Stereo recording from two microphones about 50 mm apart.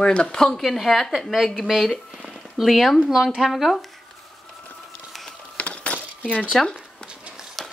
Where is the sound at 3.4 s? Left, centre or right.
Centre.